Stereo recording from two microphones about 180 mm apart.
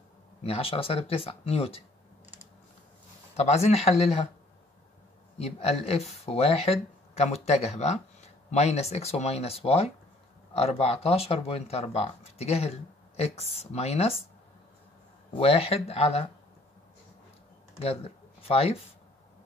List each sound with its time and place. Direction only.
0.4 s speech: 35° left (ahead or behind)
3.3 s speech: 35° left (ahead or behind)
5.4 s speech: 35° left (ahead or behind)
15.3 s speech: 35° left (ahead or behind)
17.8 s speech: 35° left (ahead or behind)